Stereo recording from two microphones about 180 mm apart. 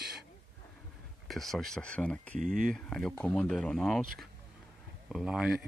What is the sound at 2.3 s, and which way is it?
Speech, 45° right (ahead or behind).